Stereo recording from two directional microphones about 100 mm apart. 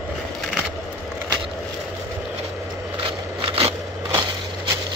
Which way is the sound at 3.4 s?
75° right (ahead or behind).